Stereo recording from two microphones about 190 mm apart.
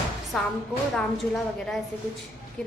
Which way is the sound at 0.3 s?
Centre (ahead or behind).